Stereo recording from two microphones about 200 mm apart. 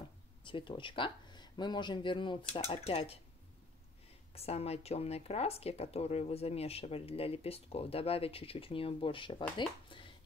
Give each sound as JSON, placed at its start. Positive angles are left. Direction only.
{"t": 0.5, "sound": "speech", "side_deg": 25}
{"t": 4.3, "sound": "speech", "side_deg": 30}
{"t": 9.6, "sound": "a sound", "side_deg": 25}